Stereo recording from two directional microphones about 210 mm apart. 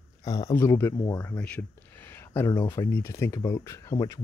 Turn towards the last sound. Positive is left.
turn(degrees=15)  # may be behind; listen again after turning